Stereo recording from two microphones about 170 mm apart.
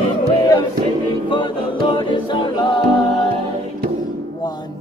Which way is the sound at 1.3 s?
30° left (ahead or behind).